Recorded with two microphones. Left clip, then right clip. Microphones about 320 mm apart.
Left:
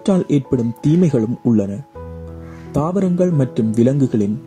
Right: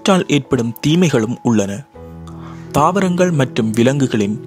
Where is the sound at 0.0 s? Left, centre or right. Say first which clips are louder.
Right 3 dB; right.